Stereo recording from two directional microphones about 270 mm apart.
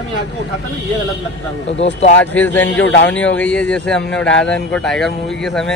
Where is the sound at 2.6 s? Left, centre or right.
Left.